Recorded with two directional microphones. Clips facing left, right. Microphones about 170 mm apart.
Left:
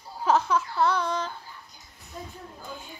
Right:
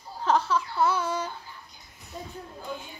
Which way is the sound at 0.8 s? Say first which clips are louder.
Even; 5° right (ahead or behind).